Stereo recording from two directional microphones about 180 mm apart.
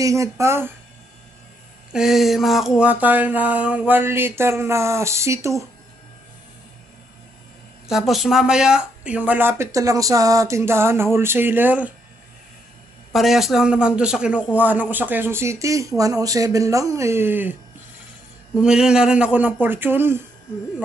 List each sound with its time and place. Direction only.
0.0 s speech: 15° right (ahead or behind)
1.9 s a sound: 5° right (ahead or behind)
2.8 s speech: 10° right (ahead or behind)
7.9 s speech: centre (ahead or behind)
13.1 s speech: centre (ahead or behind)
18.6 s speech: 5° right (ahead or behind)